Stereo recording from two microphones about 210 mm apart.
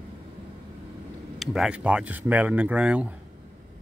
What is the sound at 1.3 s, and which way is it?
Speech, 5° right (ahead or behind).